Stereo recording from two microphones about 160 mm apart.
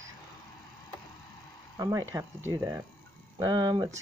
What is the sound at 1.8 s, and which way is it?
Speech, 20° right (ahead or behind).